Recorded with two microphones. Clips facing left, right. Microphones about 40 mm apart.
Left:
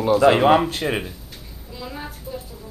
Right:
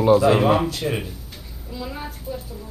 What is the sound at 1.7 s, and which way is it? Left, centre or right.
Speech, centre.